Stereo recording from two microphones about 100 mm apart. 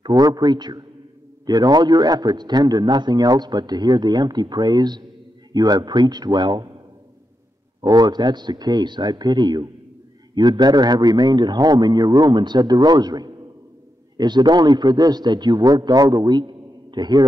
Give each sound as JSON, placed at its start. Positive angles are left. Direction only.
{"t": 0.0, "sound": "a man's voice", "side_deg": -40}
{"t": 7.8, "sound": "a man's voice", "side_deg": -45}